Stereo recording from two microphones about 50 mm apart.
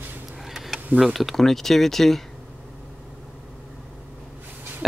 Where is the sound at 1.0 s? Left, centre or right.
Centre.